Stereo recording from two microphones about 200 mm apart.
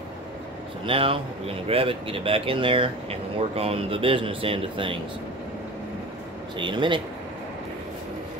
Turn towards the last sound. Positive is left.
turn(degrees=-25)  # may be behind; listen again after turning